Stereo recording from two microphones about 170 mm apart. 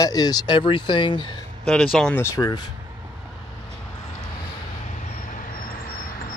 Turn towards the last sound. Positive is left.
turn(degrees=55)  # may be behind; listen again after turning